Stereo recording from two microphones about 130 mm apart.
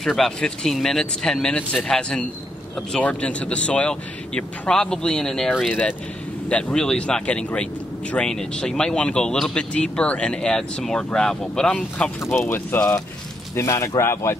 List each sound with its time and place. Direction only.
0.0 s speech: centre (ahead or behind)
5.7 s speech: 10° left (ahead or behind)
12.2 s speech: 20° left (ahead or behind)